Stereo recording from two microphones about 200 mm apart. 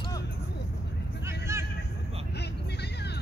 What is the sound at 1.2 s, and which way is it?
Vehicle, 15° right (ahead or behind).